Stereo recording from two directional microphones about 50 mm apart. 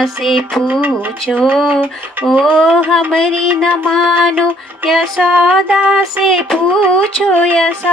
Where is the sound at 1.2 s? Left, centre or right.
Centre.